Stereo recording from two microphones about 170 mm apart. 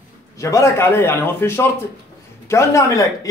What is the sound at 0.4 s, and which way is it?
A man's voice, 15° left (ahead or behind).